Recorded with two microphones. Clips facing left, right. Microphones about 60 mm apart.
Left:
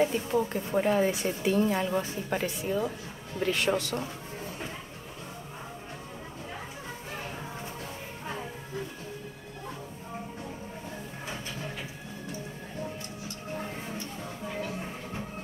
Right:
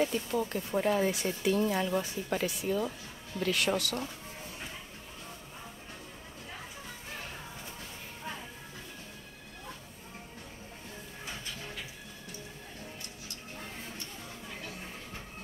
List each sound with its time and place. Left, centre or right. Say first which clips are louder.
0.0 s a woman's voice: left 4 dB; left
0.7 s a woman's voice: left 3 dB; left